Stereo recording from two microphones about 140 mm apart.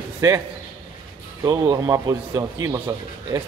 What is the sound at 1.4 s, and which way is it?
A man's voice, 25° right (ahead or behind).